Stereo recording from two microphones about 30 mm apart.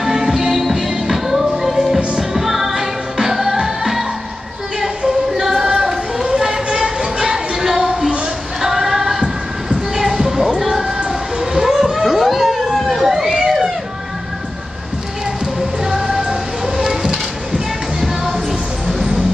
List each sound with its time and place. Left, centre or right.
0.0 s music: centre
4.7 s a sound: centre
6.7 s music: right
11.1 s children playing: centre
13.4 s a sound: centre
15.8 s music: centre